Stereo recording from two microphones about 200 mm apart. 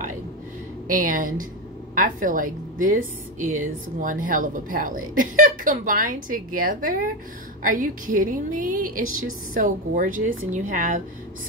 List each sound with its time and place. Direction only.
0.8 s a woman's voice: 45° right (ahead or behind)